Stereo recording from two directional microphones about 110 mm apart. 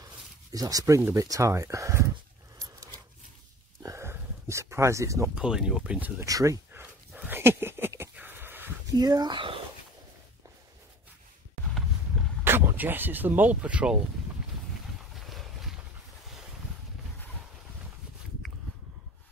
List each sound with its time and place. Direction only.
0.5 s speech: 35° right (ahead or behind)
2.6 s a sound: 30° right (ahead or behind)
5.3 s speech: 5° right (ahead or behind)
6.2 s speech: 30° right (ahead or behind)
6.7 s dog: 20° right (ahead or behind)
8.8 s speech: 35° right (ahead or behind)
12.1 s dog: 5° left (ahead or behind)
12.4 s speech: 20° right (ahead or behind)
15.1 s boat: centre (ahead or behind)